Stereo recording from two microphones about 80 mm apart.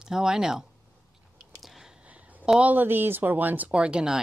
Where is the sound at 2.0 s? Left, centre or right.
Centre.